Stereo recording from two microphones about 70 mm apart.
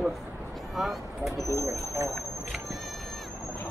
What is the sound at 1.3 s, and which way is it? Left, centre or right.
Speech, left.